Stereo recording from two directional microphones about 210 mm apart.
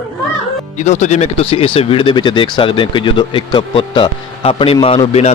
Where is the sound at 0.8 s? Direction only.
35° left (ahead or behind).